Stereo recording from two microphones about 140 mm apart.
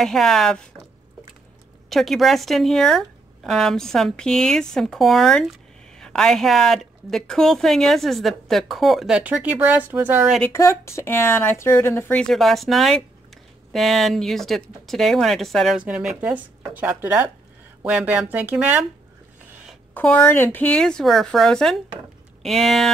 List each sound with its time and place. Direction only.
0.0 s speech: centre (ahead or behind)
1.9 s speech: centre (ahead or behind)
10.5 s speech: 20° left (ahead or behind); by 18.9 s 10° right (ahead or behind)
19.9 s speech: 10° left (ahead or behind)